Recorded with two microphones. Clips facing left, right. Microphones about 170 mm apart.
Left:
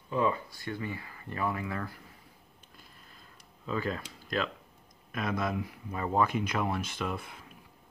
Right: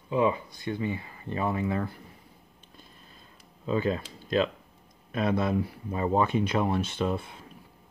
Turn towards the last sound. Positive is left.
turn(degrees=-25)  # may be behind; listen again after turning